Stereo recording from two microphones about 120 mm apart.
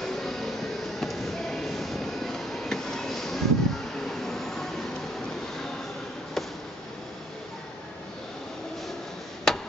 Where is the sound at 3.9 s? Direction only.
5° left (ahead or behind).